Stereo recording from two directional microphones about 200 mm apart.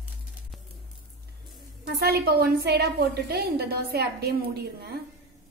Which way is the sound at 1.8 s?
55° right (ahead or behind).